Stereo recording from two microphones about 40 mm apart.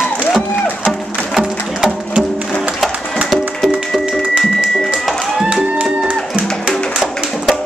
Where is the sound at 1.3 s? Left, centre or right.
Centre.